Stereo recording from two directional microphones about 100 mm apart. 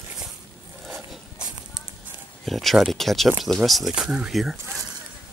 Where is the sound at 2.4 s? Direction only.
Centre (ahead or behind).